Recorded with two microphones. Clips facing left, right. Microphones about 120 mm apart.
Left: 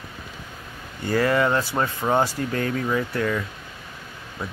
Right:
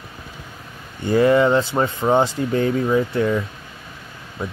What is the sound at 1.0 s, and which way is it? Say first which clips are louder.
Speech: right 6 dB; 20° right (ahead or behind).